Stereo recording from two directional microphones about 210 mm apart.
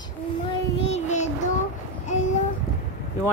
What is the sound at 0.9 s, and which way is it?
Child singing, 35° left (ahead or behind).